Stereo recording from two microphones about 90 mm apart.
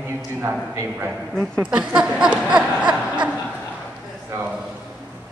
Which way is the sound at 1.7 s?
10° right (ahead or behind).